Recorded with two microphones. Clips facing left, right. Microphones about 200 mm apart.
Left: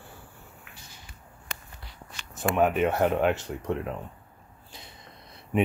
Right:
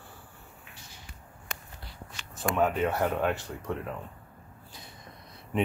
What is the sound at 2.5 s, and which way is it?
Speech, 20° left (ahead or behind).